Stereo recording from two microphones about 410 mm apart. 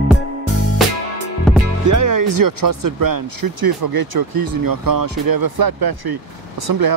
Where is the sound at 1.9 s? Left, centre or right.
Right.